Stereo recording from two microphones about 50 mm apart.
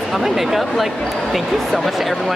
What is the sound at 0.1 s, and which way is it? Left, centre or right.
Speech, centre.